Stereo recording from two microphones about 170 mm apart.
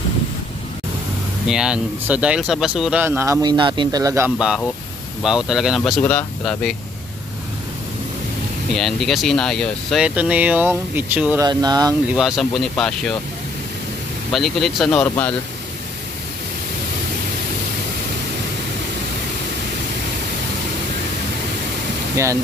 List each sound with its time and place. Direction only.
1.5 s speech: 5° right (ahead or behind)
5.2 s speech: centre (ahead or behind)
8.7 s speech: centre (ahead or behind)
11.4 s speech: 25° right (ahead or behind)
12.1 s speech: 5° right (ahead or behind)
14.3 s speech: centre (ahead or behind)
22.1 s speech: 15° right (ahead or behind)